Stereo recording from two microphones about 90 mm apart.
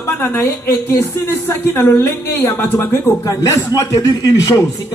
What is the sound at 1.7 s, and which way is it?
A man's voice, 30° left (ahead or behind).